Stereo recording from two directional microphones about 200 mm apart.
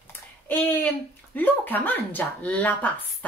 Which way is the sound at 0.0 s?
10° left (ahead or behind).